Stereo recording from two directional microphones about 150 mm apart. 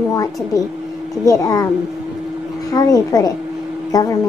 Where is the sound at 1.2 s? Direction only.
25° left (ahead or behind).